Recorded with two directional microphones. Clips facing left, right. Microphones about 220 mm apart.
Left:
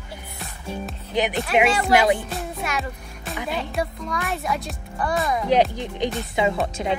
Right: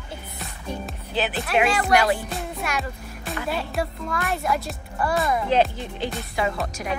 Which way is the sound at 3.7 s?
Centre (ahead or behind).